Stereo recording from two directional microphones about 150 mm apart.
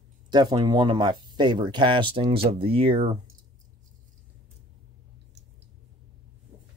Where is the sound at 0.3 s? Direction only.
30° right (ahead or behind).